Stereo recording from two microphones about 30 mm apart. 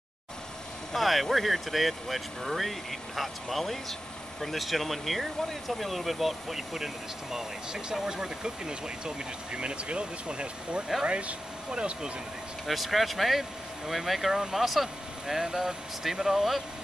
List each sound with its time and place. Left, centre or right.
0.9 s speech: centre; by 11.3 s right
11.7 s speech: right
12.6 s speech: centre